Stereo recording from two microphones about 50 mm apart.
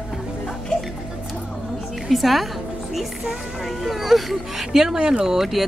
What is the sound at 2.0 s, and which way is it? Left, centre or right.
Speech, centre.